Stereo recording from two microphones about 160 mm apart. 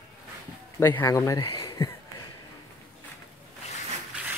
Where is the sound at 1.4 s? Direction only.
35° left (ahead or behind).